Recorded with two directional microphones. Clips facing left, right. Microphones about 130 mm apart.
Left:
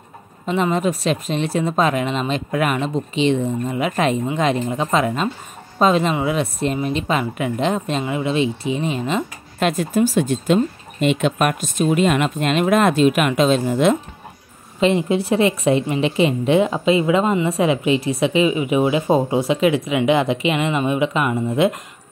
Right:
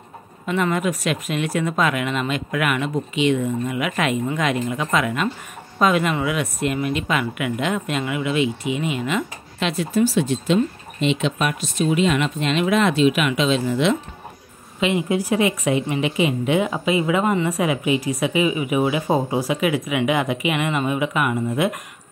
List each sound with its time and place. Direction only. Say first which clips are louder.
0.5 s speech: left 2 dB; 25° left (ahead or behind)
9.6 s speech: left 2 dB; 45° left (ahead or behind)
14.8 s a woman's voice: left 3 dB; 35° left (ahead or behind)